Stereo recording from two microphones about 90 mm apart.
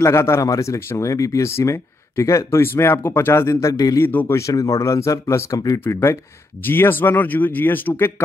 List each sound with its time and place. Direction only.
0.0 s speech: 30° left (ahead or behind)
3.7 s a man's voice: 45° left (ahead or behind)
4.0 s speech: 20° left (ahead or behind)
4.3 s speech: 35° left (ahead or behind)